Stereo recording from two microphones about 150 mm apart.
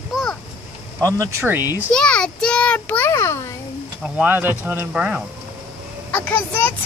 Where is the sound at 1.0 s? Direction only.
20° right (ahead or behind).